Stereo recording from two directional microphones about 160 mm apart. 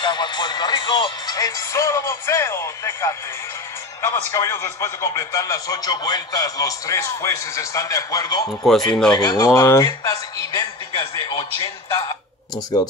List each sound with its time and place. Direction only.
0.0 s a man's voice: 30° left (ahead or behind)
4.3 s a man's voice: 20° left (ahead or behind)
8.6 s speech: centre (ahead or behind)
9.1 s a man's voice: 25° left (ahead or behind)